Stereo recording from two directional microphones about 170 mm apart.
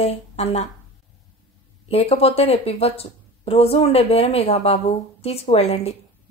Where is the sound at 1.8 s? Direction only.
35° left (ahead or behind).